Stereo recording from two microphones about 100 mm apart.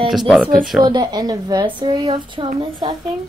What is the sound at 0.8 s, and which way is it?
A woman's voice, 45° right (ahead or behind).